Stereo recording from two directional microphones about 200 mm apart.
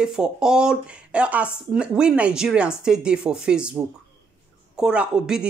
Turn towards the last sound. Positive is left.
turn(degrees=-5)  # may be behind; listen again after turning